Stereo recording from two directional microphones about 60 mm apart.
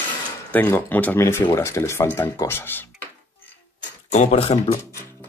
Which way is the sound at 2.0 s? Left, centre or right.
Left.